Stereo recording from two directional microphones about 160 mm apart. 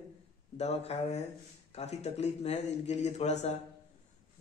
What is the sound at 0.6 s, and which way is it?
A man's voice, 40° left (ahead or behind).